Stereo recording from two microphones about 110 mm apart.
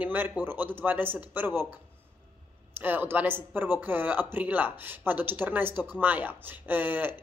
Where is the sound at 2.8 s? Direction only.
15° right (ahead or behind).